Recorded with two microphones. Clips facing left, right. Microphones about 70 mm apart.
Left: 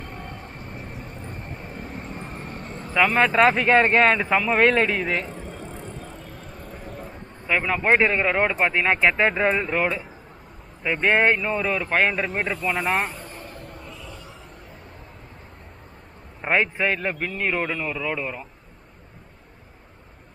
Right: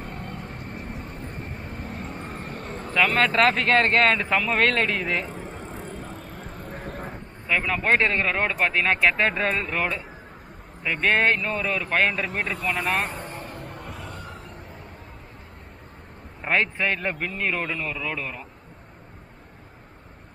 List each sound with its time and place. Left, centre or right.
0.0 s music: centre
0.4 s vehicle: centre
1.5 s vehicle: left
1.9 s vehicle: centre
2.8 s speech: centre
5.5 s bicycle: centre
5.9 s vehicle: right
7.4 s speech: centre
13.1 s a sound: right
13.5 s a sound: centre
13.7 s a sound: right
16.3 s speech: centre